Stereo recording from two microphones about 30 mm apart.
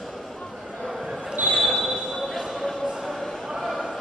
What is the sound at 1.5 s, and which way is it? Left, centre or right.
Basketball bounce, centre.